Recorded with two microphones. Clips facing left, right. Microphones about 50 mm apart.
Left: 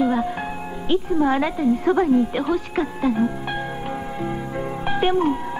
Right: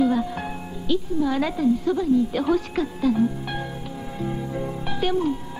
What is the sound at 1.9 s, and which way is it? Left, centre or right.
Speech, left.